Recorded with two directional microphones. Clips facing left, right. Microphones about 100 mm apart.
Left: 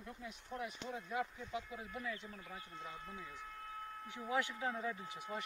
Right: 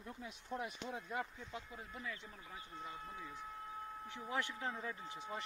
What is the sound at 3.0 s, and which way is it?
Speech, 20° right (ahead or behind).